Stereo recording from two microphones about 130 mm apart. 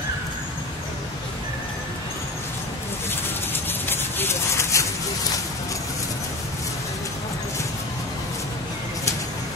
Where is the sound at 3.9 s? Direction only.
20° left (ahead or behind).